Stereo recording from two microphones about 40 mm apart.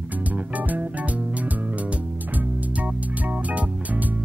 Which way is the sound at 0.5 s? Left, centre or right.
Right.